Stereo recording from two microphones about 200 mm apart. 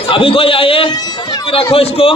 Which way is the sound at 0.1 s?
25° left (ahead or behind).